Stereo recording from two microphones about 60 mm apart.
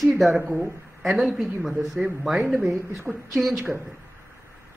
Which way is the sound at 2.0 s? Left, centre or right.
Centre.